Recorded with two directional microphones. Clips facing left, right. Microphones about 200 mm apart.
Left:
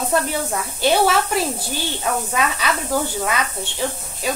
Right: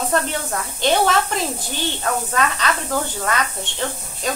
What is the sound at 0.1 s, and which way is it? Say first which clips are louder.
Speech: left 1 dB; 10° left (ahead or behind).